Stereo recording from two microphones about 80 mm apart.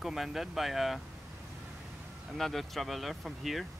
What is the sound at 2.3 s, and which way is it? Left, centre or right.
Speech, centre.